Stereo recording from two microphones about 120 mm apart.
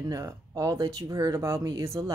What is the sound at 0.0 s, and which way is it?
Speech, 30° right (ahead or behind).